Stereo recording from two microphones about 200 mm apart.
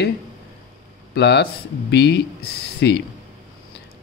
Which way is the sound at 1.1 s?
60° left (ahead or behind).